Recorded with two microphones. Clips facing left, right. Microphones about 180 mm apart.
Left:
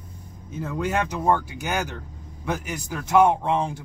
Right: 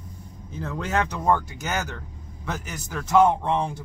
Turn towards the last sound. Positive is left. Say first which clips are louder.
# even
turn(degrees=15)  # may be behind; listen again after turning